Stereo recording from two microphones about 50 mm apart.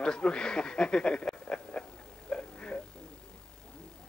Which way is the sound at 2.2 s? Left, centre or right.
Left.